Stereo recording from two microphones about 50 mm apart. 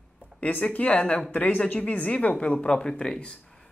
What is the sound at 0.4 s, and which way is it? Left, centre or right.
Speech, left.